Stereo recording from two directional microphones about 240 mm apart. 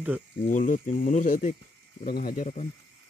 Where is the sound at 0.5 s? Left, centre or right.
Left.